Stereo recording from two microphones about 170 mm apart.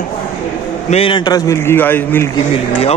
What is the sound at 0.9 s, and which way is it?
A man's voice, 30° left (ahead or behind).